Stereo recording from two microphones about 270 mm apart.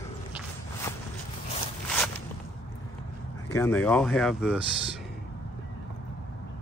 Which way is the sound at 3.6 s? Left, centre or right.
Centre.